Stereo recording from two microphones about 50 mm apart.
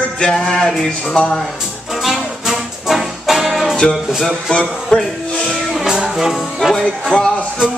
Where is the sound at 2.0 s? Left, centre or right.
Centre.